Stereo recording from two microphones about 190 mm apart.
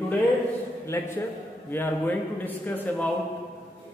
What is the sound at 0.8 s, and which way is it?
A man's voice, 10° left (ahead or behind).